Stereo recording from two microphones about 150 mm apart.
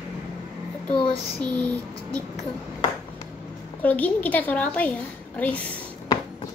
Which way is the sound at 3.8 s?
10° left (ahead or behind).